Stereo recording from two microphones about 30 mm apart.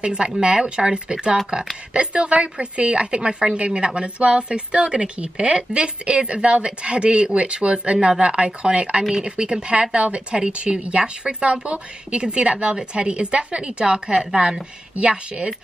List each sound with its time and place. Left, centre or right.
0.0 s a woman's voice: right
2.0 s a woman's voice: right
3.5 s a woman's voice: right